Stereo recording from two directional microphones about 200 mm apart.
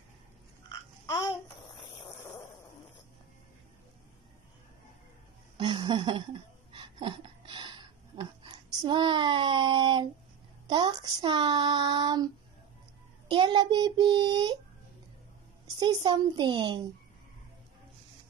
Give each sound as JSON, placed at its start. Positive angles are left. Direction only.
{"t": 5.6, "sound": "a sound", "side_deg": -25}
{"t": 8.8, "sound": "child singing", "side_deg": -25}
{"t": 10.7, "sound": "speech", "side_deg": -20}
{"t": 13.3, "sound": "child singing", "side_deg": -20}
{"t": 15.6, "sound": "child singing", "side_deg": -20}